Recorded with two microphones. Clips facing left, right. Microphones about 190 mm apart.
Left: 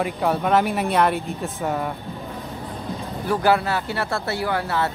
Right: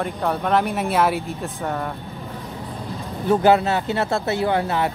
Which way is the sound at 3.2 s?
20° right (ahead or behind).